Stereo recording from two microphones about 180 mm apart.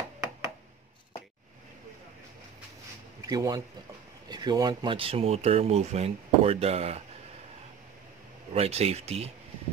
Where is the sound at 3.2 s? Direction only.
20° right (ahead or behind).